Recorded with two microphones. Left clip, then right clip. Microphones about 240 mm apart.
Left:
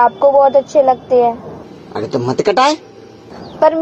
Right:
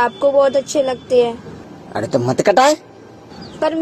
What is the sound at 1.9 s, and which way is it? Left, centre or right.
Speech, right.